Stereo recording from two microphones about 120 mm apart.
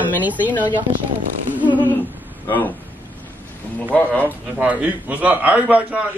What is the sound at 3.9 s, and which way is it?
Speech, 15° left (ahead or behind).